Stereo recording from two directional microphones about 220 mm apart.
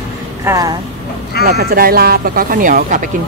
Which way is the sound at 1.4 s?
45° right (ahead or behind).